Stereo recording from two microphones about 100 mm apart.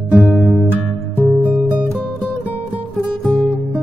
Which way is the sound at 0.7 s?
15° right (ahead or behind).